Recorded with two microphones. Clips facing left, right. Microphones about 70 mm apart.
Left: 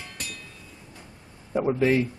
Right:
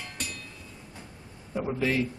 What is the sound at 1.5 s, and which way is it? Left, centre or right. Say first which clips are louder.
Speech: left 6 dB; left.